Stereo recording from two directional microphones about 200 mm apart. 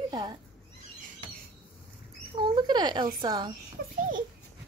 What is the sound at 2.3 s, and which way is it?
A child's voice, 20° right (ahead or behind).